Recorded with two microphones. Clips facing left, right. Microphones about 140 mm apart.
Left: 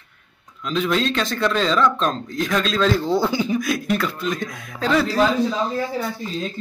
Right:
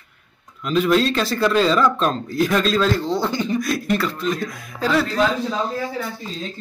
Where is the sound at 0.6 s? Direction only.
5° right (ahead or behind).